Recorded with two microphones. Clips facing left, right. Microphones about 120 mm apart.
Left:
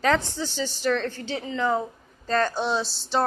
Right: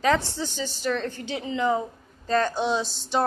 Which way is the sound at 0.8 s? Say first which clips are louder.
Left 2 dB; 20° right (ahead or behind).